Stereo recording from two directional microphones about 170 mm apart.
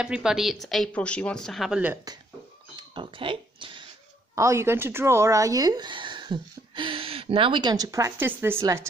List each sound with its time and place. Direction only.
0.0 s speech: 5° right (ahead or behind)
2.7 s a sound: 30° right (ahead or behind)
4.4 s speech: 15° right (ahead or behind)